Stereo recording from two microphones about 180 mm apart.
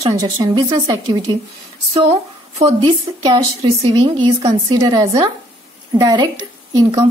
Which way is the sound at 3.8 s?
20° right (ahead or behind).